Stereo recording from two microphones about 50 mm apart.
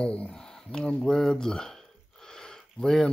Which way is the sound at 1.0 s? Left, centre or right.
Centre.